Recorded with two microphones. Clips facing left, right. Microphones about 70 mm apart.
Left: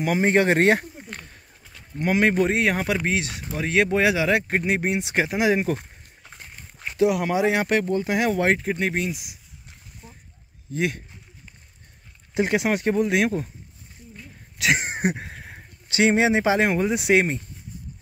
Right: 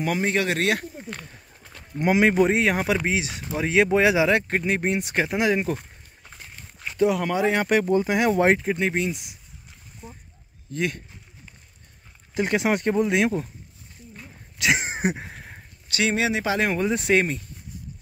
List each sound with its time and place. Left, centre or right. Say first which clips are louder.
0.2 s speech: left 5 dB; left
1.7 s speech: right 2 dB; centre
6.4 s walk: even; centre
6.9 s speech: left 1 dB; centre
7.6 s speech: right 2 dB; centre
10.0 s a sound: right 6 dB; centre
10.7 s speech: left 1 dB; centre
12.6 s speech: even; centre
14.6 s a sound: left 1 dB; centre
15.9 s speech: left 4 dB; left
16.6 s speech: left 2 dB; centre